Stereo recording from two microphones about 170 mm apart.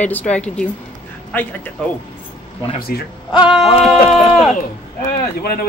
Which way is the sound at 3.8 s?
Centre (ahead or behind).